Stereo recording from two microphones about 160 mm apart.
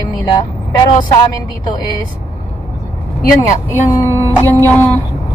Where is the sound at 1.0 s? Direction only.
25° left (ahead or behind).